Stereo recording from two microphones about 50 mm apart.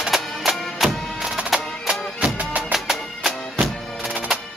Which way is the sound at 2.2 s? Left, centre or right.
Right.